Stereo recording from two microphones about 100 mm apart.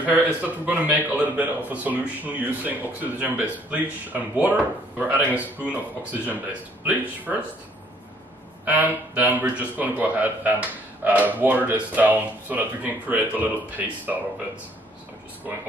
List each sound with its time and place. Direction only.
0.0 s a man's voice: 15° right (ahead or behind)
7.3 s a man's voice: 10° right (ahead or behind)
8.6 s a man's voice: 15° right (ahead or behind)